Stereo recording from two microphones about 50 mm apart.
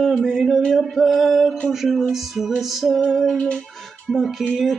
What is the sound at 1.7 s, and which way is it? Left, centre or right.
Music, centre.